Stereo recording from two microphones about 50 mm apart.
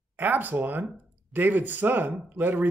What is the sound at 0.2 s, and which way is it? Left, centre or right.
Speech, right.